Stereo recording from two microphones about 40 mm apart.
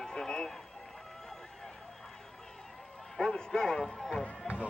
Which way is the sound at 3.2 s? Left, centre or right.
Centre.